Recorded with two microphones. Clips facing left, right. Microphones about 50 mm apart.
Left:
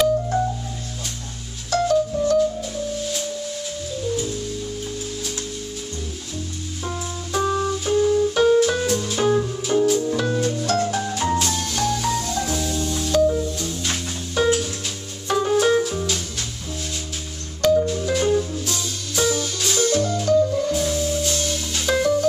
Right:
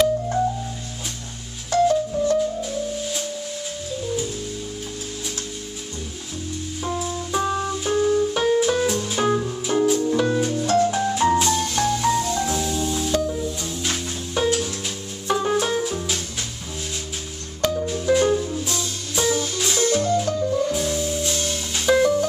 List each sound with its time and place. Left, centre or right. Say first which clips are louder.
1.7 s music: right 1 dB; centre
6.8 s music: right 3 dB; centre
15.2 s organ: left 3 dB; centre
17.8 s music: right 2 dB; centre